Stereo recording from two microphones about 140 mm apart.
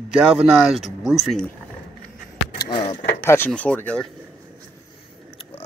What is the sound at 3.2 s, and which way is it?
Speech, 15° left (ahead or behind).